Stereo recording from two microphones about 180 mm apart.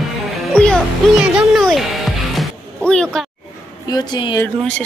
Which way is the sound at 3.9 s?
25° left (ahead or behind).